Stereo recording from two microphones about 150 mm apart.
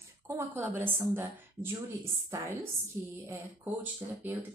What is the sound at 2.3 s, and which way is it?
A woman's voice, 20° right (ahead or behind).